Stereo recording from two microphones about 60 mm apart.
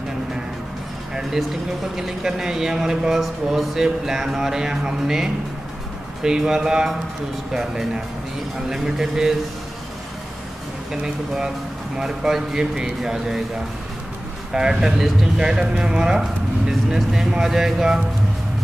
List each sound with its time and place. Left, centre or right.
2.0 s speech: centre
10.9 s speech: centre
14.5 s speech: centre